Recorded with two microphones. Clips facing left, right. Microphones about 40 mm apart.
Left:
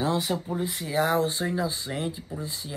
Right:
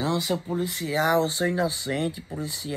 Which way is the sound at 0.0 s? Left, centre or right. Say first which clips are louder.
Even; centre.